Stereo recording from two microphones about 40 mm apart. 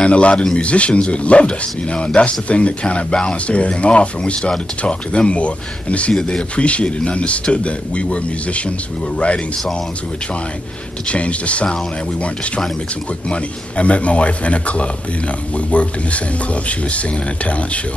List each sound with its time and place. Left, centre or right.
0.0 s a man's voice: left
6.1 s speech: centre
6.5 s a man's voice: left
11.1 s a man's voice: left